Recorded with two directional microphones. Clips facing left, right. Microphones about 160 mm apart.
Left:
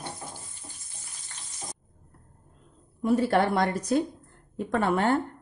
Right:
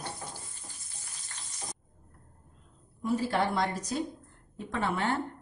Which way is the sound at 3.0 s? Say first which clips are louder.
Left 6 dB; 60° left (ahead or behind).